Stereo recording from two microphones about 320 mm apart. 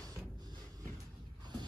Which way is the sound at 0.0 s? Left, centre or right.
Centre.